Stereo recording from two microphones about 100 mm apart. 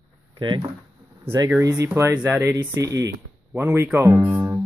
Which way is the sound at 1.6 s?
35° right (ahead or behind).